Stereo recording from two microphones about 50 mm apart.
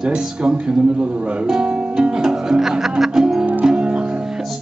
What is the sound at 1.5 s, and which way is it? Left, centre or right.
Music, centre.